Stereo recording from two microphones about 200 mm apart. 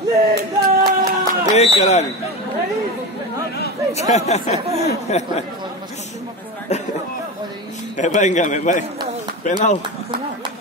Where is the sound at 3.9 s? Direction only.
35° left (ahead or behind).